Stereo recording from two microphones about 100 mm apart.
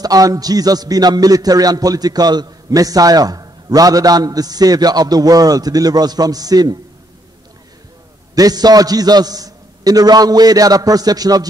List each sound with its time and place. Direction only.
0.0 s a man's voice: 40° right (ahead or behind)
8.4 s a man's voice: 40° right (ahead or behind)